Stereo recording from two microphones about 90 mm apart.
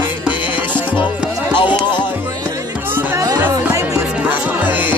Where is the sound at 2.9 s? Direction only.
25° right (ahead or behind).